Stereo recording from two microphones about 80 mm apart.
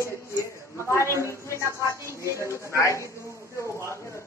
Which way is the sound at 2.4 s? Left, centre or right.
Left.